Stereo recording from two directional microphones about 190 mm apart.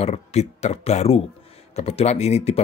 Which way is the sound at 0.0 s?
35° left (ahead or behind).